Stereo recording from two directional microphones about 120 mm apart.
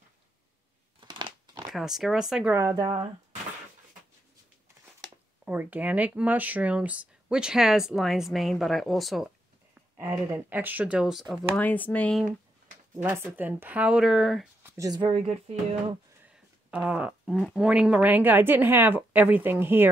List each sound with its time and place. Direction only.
1.0 s crunch: 35° right (ahead or behind)
1.7 s speech: 5° right (ahead or behind)
2.5 s speech: 25° right (ahead or behind)
5.4 s speech: 15° right (ahead or behind)
9.9 s speech: 25° right (ahead or behind); by 11.4 s 5° right (ahead or behind)
11.5 s speech: 15° left (ahead or behind)
12.9 s speech: 20° right (ahead or behind); by 14.5 s centre (ahead or behind)
14.6 s a sound: 25° right (ahead or behind)
15.1 s speech: 60° right (ahead or behind)
16.7 s speech: 10° right (ahead or behind)